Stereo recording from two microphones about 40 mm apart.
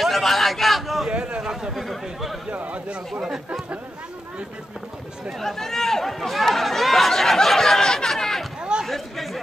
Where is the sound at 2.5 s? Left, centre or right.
Right.